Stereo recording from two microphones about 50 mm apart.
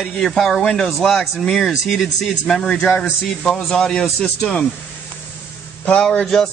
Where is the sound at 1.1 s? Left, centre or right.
Centre.